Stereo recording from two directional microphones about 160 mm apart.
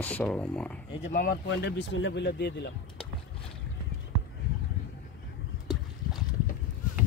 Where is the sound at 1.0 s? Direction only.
60° left (ahead or behind); by 2.7 s 90° left.